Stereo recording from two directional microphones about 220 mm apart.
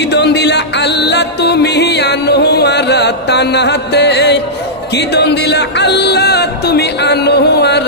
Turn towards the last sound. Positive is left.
turn(degrees=50)  # may be behind; listen again after turning